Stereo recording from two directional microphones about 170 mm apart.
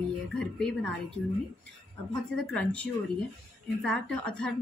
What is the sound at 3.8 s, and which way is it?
Speech, 5° left (ahead or behind).